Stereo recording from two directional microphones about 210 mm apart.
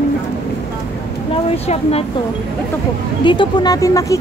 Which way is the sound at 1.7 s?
30° left (ahead or behind).